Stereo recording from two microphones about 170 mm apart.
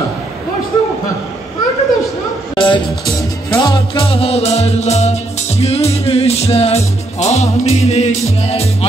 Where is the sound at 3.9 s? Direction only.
35° left (ahead or behind).